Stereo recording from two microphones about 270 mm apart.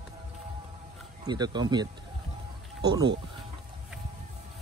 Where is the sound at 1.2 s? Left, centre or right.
Centre.